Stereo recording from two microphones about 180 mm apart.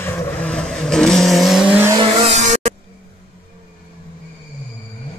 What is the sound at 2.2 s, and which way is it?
Music, 40° right (ahead or behind).